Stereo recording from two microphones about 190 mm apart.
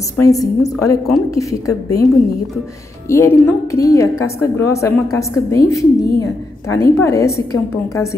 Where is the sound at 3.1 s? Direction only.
15° left (ahead or behind).